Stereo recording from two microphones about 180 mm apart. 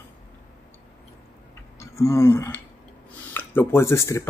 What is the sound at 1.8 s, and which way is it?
Speech, 15° left (ahead or behind).